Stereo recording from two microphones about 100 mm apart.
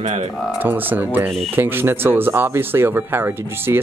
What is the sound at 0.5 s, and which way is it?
Speech, 20° right (ahead or behind).